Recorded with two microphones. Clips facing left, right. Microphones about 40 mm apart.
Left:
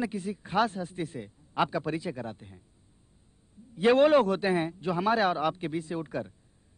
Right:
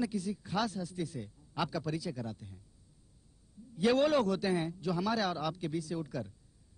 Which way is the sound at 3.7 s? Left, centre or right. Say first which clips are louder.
Left 7 dB; left.